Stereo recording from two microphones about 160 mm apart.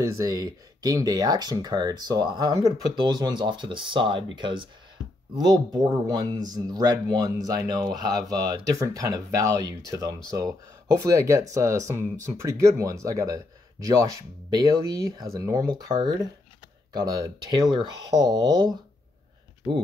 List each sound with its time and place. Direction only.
0.0 s speech: 20° right (ahead or behind)
8.1 s speech: centre (ahead or behind)
8.5 s speech: 20° right (ahead or behind)